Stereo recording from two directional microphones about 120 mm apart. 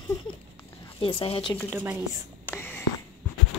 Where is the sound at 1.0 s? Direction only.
50° left (ahead or behind).